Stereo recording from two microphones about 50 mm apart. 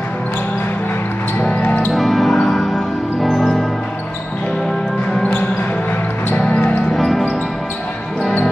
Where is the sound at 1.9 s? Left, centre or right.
Centre.